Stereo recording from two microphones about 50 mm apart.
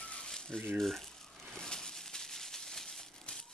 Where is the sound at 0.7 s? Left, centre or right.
Centre.